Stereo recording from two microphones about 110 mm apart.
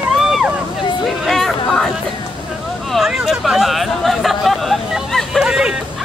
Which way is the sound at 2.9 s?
5° right (ahead or behind).